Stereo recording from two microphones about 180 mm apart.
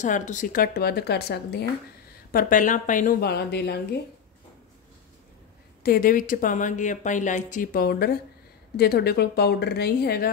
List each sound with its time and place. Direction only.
0.0 s speech: 45° left (ahead or behind); by 1.7 s 65° left (ahead or behind)
2.3 s speech: 45° left (ahead or behind); by 3.8 s 65° left (ahead or behind)
5.8 s speech: 55° left (ahead or behind)